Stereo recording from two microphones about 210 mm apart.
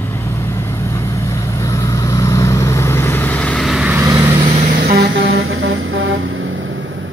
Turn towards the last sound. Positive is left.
turn(degrees=-65)  # may be behind; listen again after turning